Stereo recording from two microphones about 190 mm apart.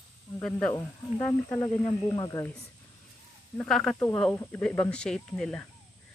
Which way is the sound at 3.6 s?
Centre (ahead or behind).